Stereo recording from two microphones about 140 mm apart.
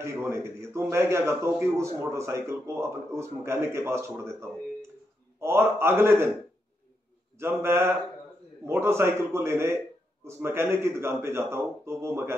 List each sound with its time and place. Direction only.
0.0 s a man's voice: 20° right (ahead or behind)
7.3 s a man's voice: 20° right (ahead or behind)